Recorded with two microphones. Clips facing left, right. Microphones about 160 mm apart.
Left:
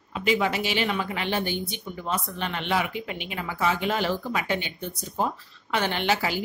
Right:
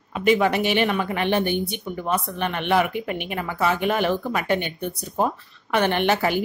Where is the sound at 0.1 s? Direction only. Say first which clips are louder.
Right 5 dB; 55° right (ahead or behind).